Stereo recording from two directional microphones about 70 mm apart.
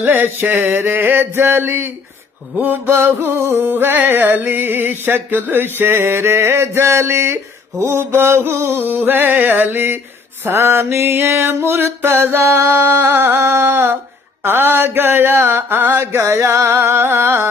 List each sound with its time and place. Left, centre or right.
0.0 s music: right